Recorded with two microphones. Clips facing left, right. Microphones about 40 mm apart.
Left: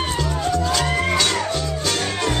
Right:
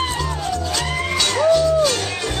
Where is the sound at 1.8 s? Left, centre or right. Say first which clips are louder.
Right 2 dB; left.